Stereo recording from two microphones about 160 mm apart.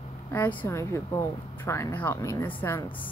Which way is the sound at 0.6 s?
15° left (ahead or behind).